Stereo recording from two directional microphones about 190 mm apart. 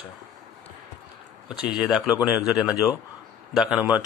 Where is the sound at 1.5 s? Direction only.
5° right (ahead or behind).